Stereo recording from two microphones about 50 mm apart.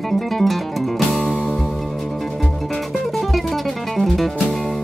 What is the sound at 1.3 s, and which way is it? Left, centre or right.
Music, centre.